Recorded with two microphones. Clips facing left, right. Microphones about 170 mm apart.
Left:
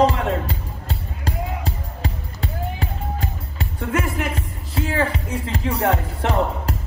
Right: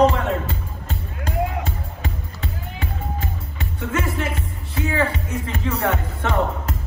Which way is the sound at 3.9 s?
30° right (ahead or behind).